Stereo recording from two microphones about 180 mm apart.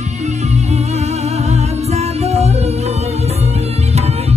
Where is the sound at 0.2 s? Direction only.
40° right (ahead or behind).